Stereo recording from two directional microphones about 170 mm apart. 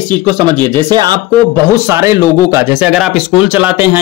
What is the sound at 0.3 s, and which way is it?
Speech, 25° right (ahead or behind).